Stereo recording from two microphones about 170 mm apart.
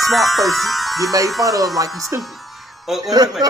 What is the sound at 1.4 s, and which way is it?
Speech, 20° right (ahead or behind).